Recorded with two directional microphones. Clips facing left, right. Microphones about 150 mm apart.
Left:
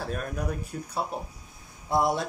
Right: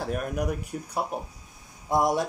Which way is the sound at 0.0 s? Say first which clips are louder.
Right 3 dB; 15° right (ahead or behind).